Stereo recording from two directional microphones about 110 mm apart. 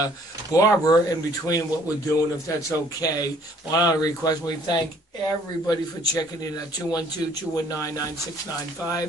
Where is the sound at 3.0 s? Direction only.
35° left (ahead or behind).